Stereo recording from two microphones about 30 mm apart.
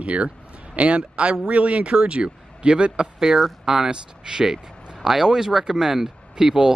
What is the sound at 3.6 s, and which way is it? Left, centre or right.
Speech, centre.